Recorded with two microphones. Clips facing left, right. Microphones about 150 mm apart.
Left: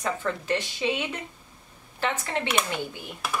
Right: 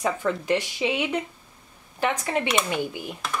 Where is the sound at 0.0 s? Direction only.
10° right (ahead or behind).